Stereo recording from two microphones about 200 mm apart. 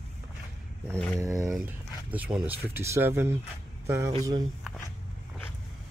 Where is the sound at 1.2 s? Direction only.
15° right (ahead or behind).